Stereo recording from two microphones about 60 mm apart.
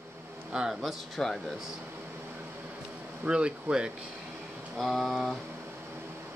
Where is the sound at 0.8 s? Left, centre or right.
Centre.